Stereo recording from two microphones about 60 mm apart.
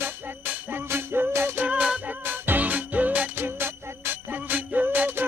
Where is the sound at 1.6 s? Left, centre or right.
Centre.